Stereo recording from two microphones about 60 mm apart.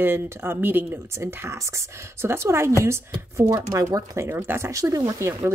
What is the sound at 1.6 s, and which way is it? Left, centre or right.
Speech, right.